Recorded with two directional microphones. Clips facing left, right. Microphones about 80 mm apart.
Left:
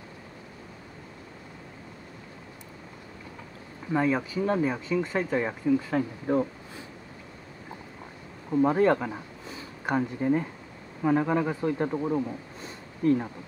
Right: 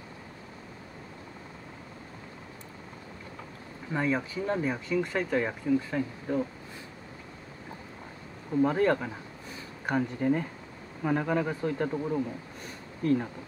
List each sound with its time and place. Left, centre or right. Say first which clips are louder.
3.9 s speech: left 4 dB; centre
5.9 s speech: left 4 dB; left
8.5 s speech: left 3 dB; centre